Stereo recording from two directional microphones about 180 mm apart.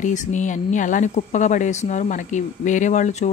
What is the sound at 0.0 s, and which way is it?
Speech, 45° left (ahead or behind).